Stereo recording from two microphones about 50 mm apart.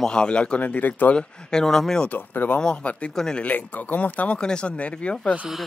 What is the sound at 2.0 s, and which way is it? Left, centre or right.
Speech, left.